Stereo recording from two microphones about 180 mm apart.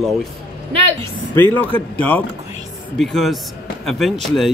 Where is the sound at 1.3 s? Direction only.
10° left (ahead or behind).